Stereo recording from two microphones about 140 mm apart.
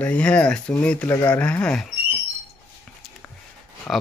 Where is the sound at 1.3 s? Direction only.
10° left (ahead or behind).